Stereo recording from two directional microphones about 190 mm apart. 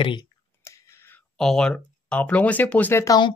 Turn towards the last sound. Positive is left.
turn(degrees=20)  # may be behind; listen again after turning